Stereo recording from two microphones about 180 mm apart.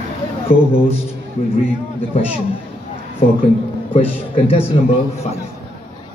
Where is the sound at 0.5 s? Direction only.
55° left (ahead or behind).